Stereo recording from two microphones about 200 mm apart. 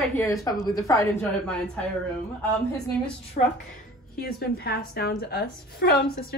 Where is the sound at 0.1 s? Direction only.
15° left (ahead or behind).